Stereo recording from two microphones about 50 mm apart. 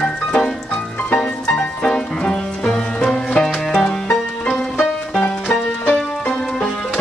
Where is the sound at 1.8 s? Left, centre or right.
Centre.